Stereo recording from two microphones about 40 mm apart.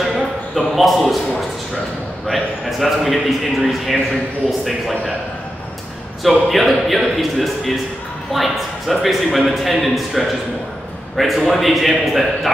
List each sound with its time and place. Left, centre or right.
0.6 s a man's voice: centre
2.2 s a man's voice: centre
6.2 s a man's voice: centre